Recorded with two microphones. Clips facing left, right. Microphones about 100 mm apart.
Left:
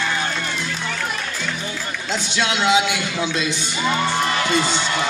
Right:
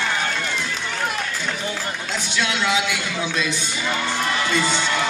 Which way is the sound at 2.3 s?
25° left (ahead or behind).